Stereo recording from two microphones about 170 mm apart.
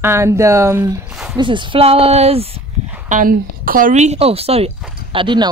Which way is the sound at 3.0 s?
50° right (ahead or behind).